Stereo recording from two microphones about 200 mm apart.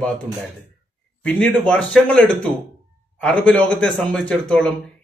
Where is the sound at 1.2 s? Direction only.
5° left (ahead or behind).